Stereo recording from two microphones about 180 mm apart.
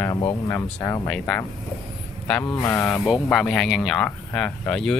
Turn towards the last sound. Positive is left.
turn(degrees=5)  # may be behind; listen again after turning